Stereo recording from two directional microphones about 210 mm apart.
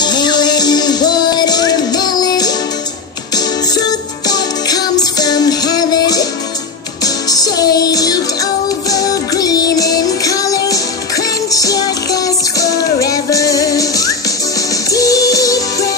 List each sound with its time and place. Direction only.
0.0 s music: 20° left (ahead or behind)
4.3 s music: 20° left (ahead or behind)
7.2 s music: 20° left (ahead or behind)